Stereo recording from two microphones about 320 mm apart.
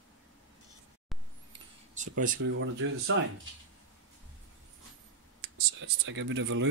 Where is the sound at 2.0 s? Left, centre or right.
Right.